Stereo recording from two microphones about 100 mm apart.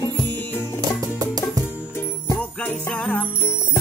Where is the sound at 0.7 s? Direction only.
40° right (ahead or behind).